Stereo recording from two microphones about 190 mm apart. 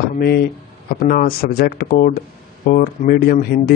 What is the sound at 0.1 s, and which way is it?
Speech, 55° left (ahead or behind).